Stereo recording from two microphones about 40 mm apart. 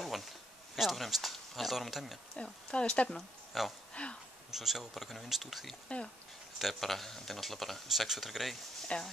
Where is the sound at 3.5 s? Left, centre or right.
Centre.